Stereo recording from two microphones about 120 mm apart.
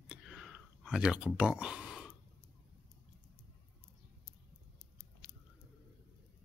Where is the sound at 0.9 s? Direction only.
5° right (ahead or behind).